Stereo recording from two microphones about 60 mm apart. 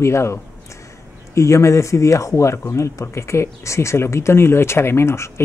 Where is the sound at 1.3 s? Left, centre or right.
Left.